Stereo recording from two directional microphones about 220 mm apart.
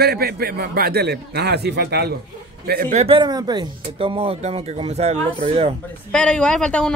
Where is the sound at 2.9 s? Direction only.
25° right (ahead or behind).